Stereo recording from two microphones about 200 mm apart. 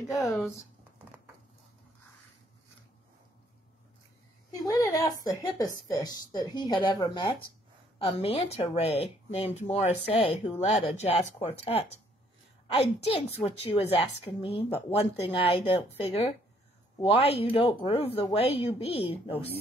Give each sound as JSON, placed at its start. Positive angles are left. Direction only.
{"t": 4.5, "sound": "a woman's voice", "side_deg": 15}